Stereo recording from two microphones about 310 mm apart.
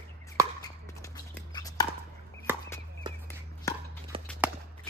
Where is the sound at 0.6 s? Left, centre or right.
Centre.